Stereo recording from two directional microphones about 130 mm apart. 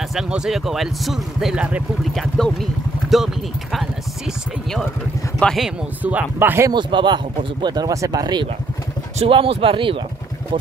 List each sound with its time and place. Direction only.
0.1 s speech: 5° right (ahead or behind)
5.4 s speech: 5° left (ahead or behind)
6.0 s speech: 10° right (ahead or behind)
6.7 s speech: 35° right (ahead or behind)
9.2 s speech: 45° right (ahead or behind)